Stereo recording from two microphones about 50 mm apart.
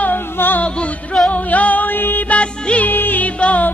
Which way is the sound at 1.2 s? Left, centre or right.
Left.